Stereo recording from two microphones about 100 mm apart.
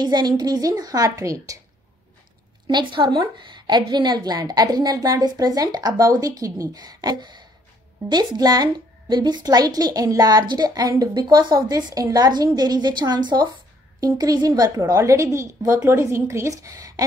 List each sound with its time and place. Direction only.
0.0 s a woman's voice: 45° right (ahead or behind)
2.6 s a woman's voice: 50° right (ahead or behind); by 17.0 s 35° right (ahead or behind)